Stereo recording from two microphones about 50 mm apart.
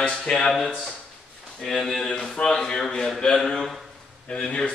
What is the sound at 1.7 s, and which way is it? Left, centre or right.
A man's voice, centre.